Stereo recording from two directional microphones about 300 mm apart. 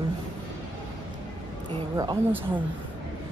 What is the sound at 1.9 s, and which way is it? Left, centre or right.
Speech, centre.